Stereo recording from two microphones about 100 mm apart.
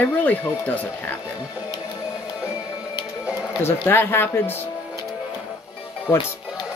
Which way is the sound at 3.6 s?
25° left (ahead or behind).